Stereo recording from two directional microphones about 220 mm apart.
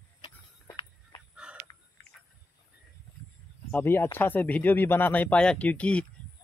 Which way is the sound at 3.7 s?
10° left (ahead or behind).